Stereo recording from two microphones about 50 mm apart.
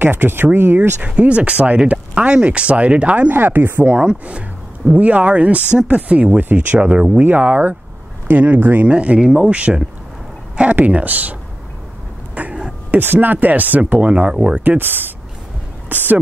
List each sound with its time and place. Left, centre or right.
0.0 s speech: right
1.0 s speech: right
3.3 s speech: right
4.0 s speech: right
8.8 s speech: right
10.5 s a sound: right
10.9 s speech: right
12.4 s a sound: right
12.9 s speech: right
14.6 s speech: right